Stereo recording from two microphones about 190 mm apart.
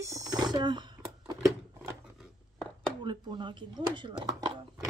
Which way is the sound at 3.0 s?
25° right (ahead or behind).